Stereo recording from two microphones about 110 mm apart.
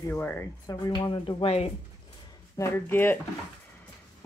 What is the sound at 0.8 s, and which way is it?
Speech, 40° left (ahead or behind).